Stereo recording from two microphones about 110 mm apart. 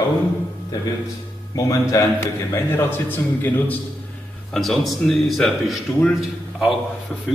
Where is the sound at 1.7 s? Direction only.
30° left (ahead or behind).